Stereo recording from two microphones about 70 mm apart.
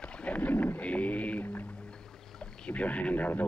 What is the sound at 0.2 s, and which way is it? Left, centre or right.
Boat, centre.